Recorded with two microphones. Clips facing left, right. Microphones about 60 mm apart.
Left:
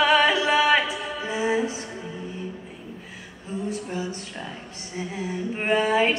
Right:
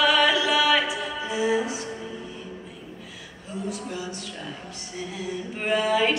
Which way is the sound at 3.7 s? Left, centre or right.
Left.